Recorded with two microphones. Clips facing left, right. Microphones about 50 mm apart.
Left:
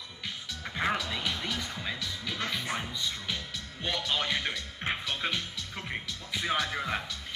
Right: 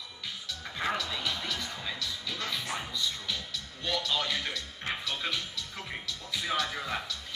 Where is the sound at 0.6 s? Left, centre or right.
Centre.